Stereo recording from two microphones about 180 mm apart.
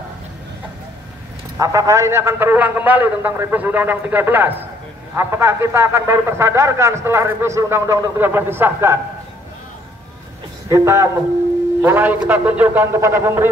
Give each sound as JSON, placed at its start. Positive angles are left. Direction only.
{"t": 1.6, "sound": "a man's voice", "side_deg": -15}
{"t": 10.7, "sound": "a man's voice", "side_deg": -15}